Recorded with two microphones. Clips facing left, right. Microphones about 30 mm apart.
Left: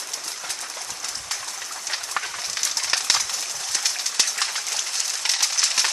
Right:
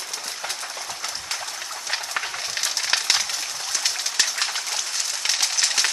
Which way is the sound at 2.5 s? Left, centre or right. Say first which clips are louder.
Right 1 dB; centre.